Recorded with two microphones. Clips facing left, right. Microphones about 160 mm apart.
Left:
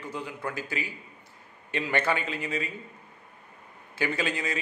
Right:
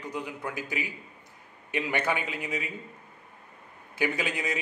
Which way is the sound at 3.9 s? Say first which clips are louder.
Even; 15° right (ahead or behind).